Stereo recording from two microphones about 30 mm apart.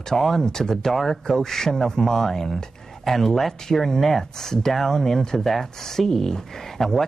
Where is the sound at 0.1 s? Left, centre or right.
Centre.